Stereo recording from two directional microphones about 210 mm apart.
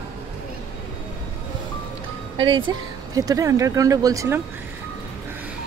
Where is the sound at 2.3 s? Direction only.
25° right (ahead or behind).